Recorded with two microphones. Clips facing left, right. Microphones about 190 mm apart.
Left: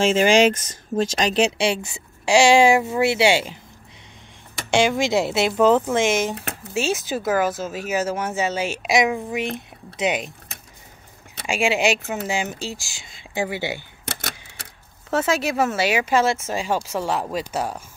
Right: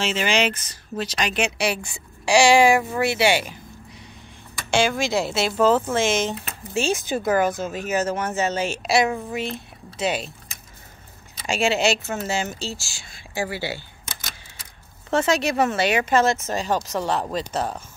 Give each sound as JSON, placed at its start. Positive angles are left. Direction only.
{"t": 0.0, "sound": "speech", "side_deg": 45}
{"t": 1.1, "sound": "a woman's voice", "side_deg": 35}
{"t": 4.6, "sound": "a woman's voice", "side_deg": 20}
{"t": 11.4, "sound": "speech", "side_deg": 10}
{"t": 14.0, "sound": "typewriter", "side_deg": 70}
{"t": 15.0, "sound": "speech", "side_deg": 5}